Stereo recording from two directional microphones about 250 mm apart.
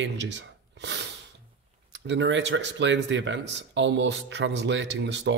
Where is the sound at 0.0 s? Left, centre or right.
Right.